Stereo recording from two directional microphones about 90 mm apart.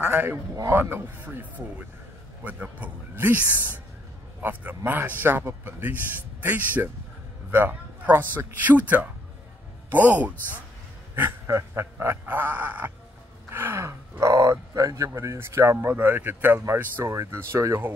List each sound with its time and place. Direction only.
0.0 s a man's voice: 25° right (ahead or behind)
11.4 s speech: 30° right (ahead or behind)
13.5 s gasp: 25° right (ahead or behind)
14.2 s speech: 35° right (ahead or behind)